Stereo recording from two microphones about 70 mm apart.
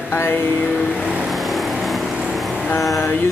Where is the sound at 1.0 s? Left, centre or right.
Centre.